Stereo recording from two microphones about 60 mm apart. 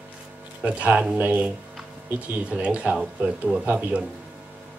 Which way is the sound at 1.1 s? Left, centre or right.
Right.